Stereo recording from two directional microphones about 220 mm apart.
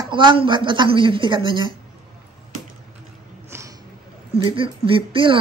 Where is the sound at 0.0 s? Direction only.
20° right (ahead or behind).